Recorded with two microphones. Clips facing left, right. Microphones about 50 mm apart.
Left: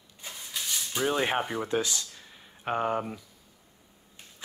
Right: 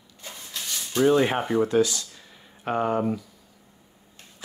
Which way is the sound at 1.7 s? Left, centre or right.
Left.